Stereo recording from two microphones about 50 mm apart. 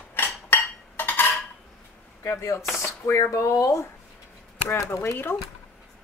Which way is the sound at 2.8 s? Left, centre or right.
Left.